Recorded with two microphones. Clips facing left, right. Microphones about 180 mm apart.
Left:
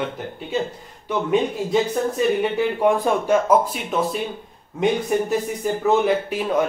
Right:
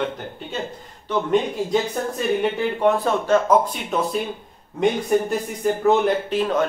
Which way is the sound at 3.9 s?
Centre (ahead or behind).